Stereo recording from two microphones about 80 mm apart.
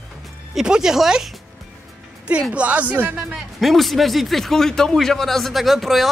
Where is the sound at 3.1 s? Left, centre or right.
Centre.